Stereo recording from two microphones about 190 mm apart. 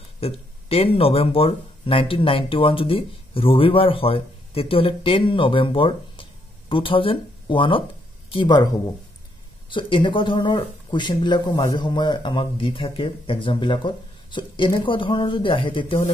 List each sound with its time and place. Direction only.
0.2 s speech: 30° left (ahead or behind)
9.7 s speech: 25° left (ahead or behind)